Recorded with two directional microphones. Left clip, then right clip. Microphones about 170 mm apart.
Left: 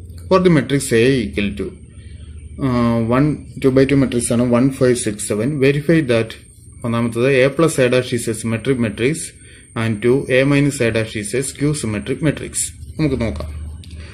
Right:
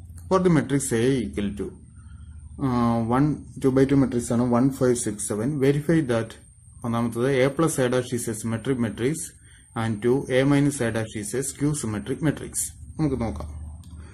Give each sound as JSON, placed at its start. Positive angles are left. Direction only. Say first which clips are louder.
{"t": 0.3, "sound": "speech", "louder": "left 7 dB", "side_deg": 5}